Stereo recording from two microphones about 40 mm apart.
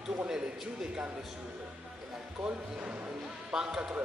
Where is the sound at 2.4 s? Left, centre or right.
Right.